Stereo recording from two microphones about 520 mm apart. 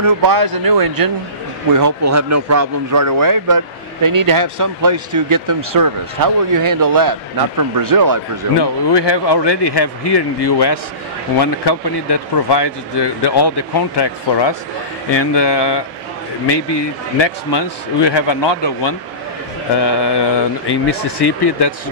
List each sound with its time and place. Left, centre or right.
0.0 s speech: right
8.5 s speech: left
17.2 s speech: left